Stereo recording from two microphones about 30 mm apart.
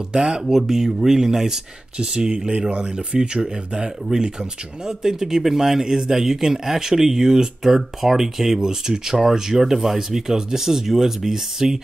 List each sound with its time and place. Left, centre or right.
0.1 s speech: right
0.4 s speech: centre
2.0 s speech: right
3.4 s speech: right